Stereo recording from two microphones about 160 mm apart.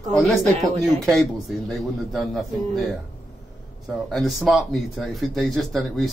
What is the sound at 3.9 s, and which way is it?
Speech, centre (ahead or behind).